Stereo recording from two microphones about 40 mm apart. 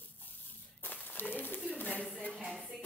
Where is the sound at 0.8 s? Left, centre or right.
Left.